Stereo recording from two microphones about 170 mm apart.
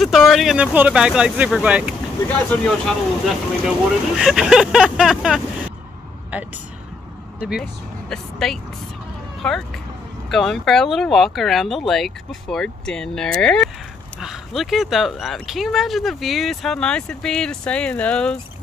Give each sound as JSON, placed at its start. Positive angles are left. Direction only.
{"t": 0.0, "sound": "speech", "side_deg": 0}
{"t": 2.5, "sound": "speech", "side_deg": 5}
{"t": 8.1, "sound": "speech", "side_deg": 5}